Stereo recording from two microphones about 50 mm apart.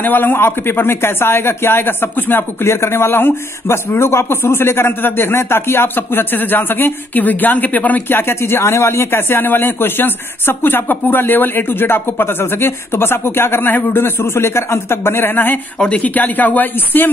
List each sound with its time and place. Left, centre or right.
0.0 s speech: left
2.7 s speech: left
8.2 s speech: left
15.8 s speech: left